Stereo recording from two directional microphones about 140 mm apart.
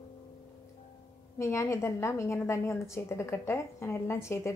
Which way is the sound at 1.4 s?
20° left (ahead or behind).